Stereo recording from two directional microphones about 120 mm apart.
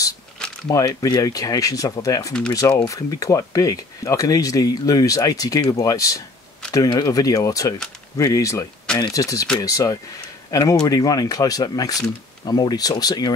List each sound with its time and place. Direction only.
0.7 s speech: 30° left (ahead or behind)